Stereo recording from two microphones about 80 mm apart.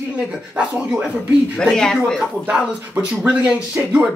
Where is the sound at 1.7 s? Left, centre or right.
Centre.